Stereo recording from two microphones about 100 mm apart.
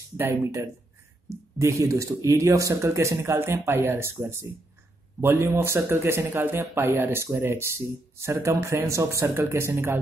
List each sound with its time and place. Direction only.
0.2 s speech: 30° right (ahead or behind)